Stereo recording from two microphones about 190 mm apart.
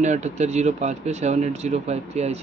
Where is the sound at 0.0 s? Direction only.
40° right (ahead or behind).